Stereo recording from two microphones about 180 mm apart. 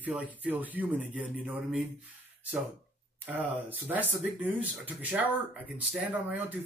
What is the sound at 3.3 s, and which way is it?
Speech, 10° right (ahead or behind).